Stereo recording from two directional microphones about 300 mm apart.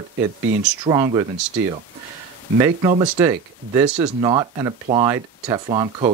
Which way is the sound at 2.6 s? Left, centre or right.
Centre.